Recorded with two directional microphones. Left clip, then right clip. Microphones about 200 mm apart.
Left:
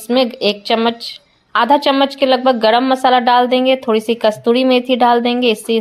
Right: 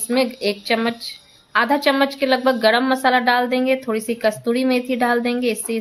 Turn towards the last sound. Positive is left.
turn(degrees=10)  # may be behind; listen again after turning